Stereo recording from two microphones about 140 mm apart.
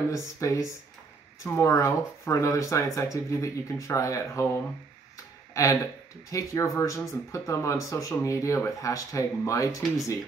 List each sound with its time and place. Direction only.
0.1 s speech: 20° left (ahead or behind)